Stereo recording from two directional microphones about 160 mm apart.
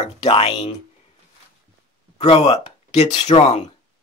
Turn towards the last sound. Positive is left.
turn(degrees=40)  # may be behind; listen again after turning